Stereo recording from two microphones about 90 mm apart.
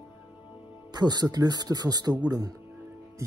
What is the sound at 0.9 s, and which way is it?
Speech, 50° right (ahead or behind).